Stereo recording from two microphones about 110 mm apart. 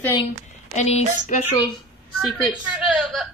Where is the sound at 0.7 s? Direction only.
90° left.